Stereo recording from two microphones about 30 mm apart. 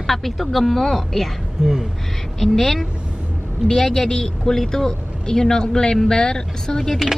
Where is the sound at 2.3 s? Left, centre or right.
Centre.